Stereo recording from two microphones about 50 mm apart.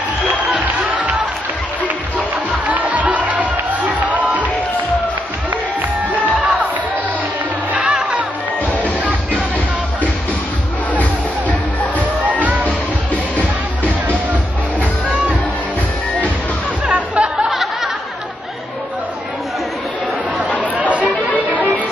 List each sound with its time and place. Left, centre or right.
0.7 s music: right
2.6 s music: right
5.8 s music: right
7.7 s music: right
11.0 s music: left
12.2 s music: right
15.0 s music: right
16.8 s music: right